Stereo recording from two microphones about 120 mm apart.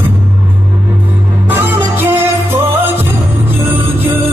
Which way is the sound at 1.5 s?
15° right (ahead or behind).